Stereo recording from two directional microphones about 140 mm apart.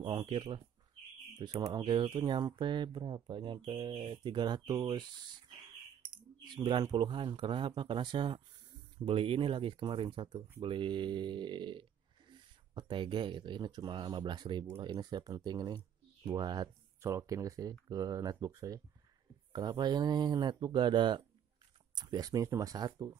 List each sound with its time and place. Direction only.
0.0 s speech: 35° right (ahead or behind)
1.6 s speech: 30° right (ahead or behind)
6.4 s speech: 35° right (ahead or behind)